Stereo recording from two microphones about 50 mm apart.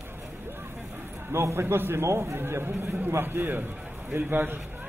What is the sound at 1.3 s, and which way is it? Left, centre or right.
Speech, right.